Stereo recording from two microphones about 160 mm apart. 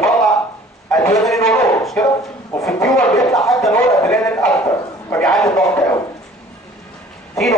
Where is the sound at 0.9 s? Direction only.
20° left (ahead or behind).